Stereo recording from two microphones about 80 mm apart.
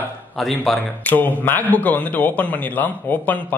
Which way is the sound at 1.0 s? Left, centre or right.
Left.